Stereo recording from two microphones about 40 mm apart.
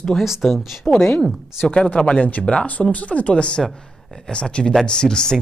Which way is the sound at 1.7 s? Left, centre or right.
Left.